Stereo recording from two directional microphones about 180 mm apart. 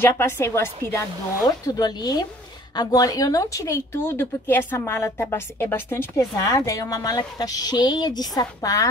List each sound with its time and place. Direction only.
0.0 s a woman's voice: 10° left (ahead or behind)